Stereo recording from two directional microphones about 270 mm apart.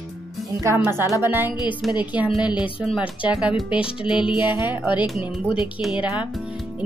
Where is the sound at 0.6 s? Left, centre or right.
Centre.